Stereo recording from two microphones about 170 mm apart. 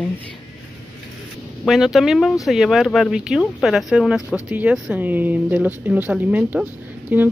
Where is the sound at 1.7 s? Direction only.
Centre (ahead or behind).